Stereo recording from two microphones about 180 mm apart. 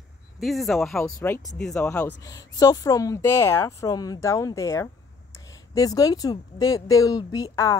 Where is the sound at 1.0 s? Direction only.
15° left (ahead or behind).